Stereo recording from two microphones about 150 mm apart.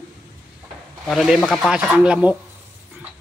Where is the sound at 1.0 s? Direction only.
Centre (ahead or behind).